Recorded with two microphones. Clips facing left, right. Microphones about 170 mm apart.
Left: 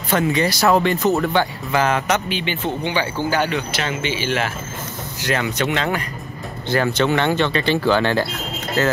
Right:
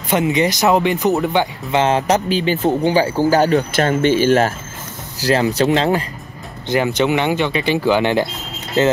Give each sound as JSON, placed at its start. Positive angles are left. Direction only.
{"t": 0.1, "sound": "speech", "side_deg": -20}
{"t": 5.2, "sound": "speech", "side_deg": -35}
{"t": 6.7, "sound": "speech", "side_deg": -15}